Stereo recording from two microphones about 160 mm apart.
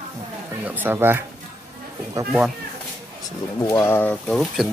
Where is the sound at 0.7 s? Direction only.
15° right (ahead or behind).